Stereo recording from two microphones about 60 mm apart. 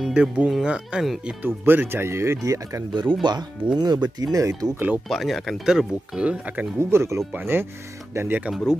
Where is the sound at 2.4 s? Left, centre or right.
Right.